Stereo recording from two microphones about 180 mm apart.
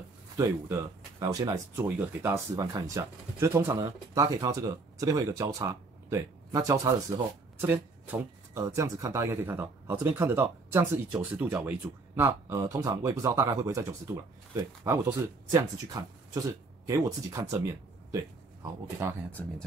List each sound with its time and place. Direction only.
0.4 s speech: 20° right (ahead or behind)
19.0 s speech: 15° right (ahead or behind)